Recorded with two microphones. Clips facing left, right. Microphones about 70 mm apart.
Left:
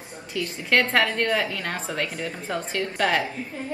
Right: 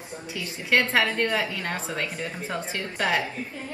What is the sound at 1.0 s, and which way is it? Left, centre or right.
Speech, centre.